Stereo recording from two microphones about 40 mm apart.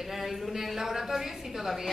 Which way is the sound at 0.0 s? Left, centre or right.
Centre.